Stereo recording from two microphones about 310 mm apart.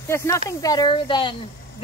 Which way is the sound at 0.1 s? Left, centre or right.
Centre.